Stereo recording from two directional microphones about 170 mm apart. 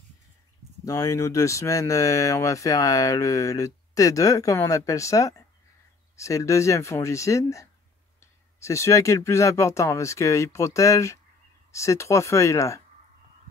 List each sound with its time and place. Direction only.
0.8 s speech: 20° left (ahead or behind)
8.6 s speech: 15° left (ahead or behind)